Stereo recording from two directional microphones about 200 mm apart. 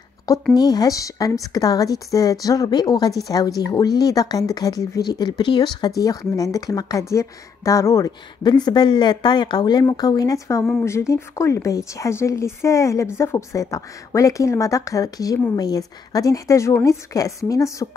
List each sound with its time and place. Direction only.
0.6 s speech: 20° left (ahead or behind)